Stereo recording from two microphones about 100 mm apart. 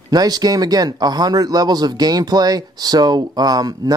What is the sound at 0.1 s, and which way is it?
Speech, 40° right (ahead or behind).